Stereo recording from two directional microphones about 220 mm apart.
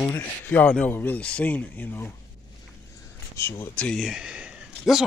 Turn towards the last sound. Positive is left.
turn(degrees=-5)  # may be behind; listen again after turning